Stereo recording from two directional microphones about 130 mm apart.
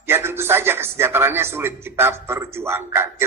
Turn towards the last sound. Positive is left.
turn(degrees=-20)  # may be behind; listen again after turning